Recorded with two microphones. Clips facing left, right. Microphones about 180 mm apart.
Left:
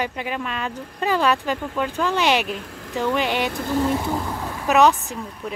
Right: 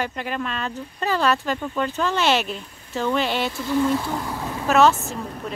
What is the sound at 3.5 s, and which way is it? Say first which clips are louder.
Speech: even; 55° left (ahead or behind).